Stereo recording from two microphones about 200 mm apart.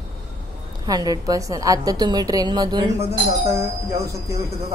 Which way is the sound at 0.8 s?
20° right (ahead or behind).